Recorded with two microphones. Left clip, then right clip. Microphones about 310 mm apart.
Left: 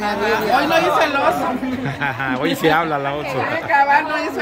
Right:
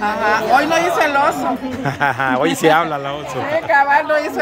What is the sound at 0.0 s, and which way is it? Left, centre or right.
Speech, centre.